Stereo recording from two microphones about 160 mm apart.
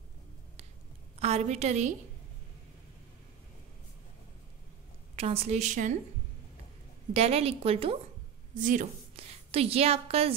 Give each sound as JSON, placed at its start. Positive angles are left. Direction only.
{"t": 1.2, "sound": "a woman's voice", "side_deg": -40}
{"t": 5.1, "sound": "a woman's voice", "side_deg": -40}
{"t": 7.2, "sound": "a woman's voice", "side_deg": -40}
{"t": 8.5, "sound": "speech", "side_deg": -55}
{"t": 9.1, "sound": "a woman's voice", "side_deg": -40}